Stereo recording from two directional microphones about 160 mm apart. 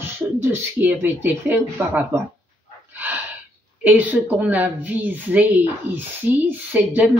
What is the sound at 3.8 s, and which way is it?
Speech, 10° right (ahead or behind).